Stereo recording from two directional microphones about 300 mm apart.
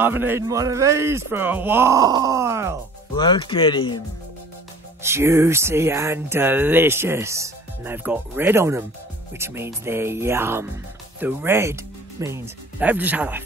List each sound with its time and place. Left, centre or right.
0.0 s speech: centre
3.2 s speech: centre
5.0 s speech: centre